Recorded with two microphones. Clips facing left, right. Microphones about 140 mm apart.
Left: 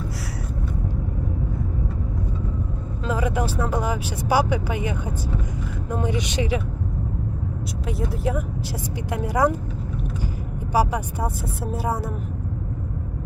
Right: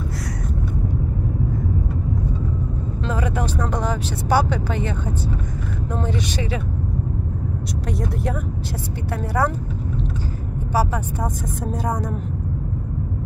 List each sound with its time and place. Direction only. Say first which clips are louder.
3.1 s speech: left 1 dB; 10° left (ahead or behind)
5.9 s speech: left 1 dB; 15° left (ahead or behind)
8.0 s speech: left 3 dB; 5° left (ahead or behind)